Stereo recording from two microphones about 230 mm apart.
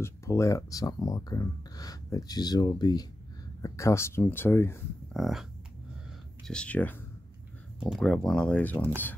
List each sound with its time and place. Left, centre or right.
0.0 s speech: centre
5.1 s speech: centre